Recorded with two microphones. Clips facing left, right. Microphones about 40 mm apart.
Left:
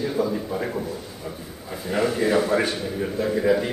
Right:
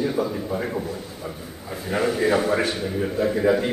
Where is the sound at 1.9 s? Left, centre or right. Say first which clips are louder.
Right 1 dB; centre.